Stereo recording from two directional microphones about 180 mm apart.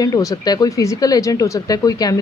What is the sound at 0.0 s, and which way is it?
Speech, 20° left (ahead or behind).